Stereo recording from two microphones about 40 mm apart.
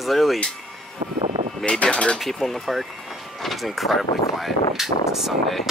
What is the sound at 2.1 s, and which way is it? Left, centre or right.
Speech, centre.